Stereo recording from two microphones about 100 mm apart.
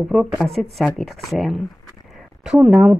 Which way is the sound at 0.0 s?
Centre (ahead or behind).